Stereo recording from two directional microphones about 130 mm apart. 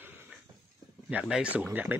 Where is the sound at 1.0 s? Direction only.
5° right (ahead or behind).